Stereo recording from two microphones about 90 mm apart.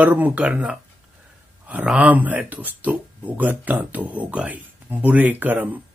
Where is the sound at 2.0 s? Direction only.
20° right (ahead or behind).